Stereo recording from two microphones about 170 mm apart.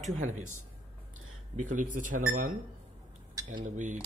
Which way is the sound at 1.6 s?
50° right (ahead or behind).